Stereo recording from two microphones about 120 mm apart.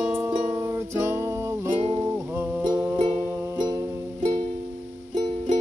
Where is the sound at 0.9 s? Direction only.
25° right (ahead or behind).